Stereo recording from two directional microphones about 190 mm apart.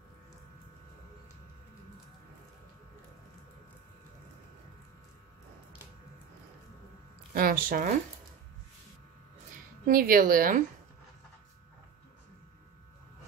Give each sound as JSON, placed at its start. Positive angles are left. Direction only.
{"t": 7.3, "sound": "a woman's voice", "side_deg": -50}
{"t": 9.8, "sound": "a woman's voice", "side_deg": -50}